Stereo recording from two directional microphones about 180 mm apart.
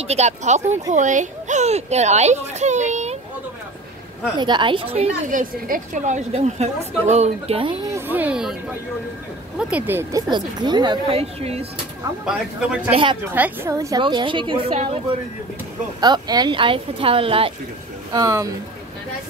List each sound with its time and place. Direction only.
0.0 s a woman's voice: 35° right (ahead or behind)
4.4 s a woman's voice: 25° right (ahead or behind)
7.8 s speech: 15° right (ahead or behind)
9.6 s speech: 5° right (ahead or behind)
10.3 s a woman's voice: 25° right (ahead or behind)
12.3 s speech: 5° right (ahead or behind)
12.9 s a woman's voice: 30° right (ahead or behind)
13.3 s a woman's voice: 10° right (ahead or behind); by 14.9 s 30° right (ahead or behind)
16.0 s a woman's voice: 20° right (ahead or behind)
18.1 s a woman's voice: 20° right (ahead or behind)